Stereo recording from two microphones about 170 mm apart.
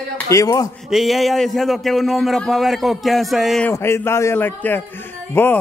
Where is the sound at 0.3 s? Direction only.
20° left (ahead or behind).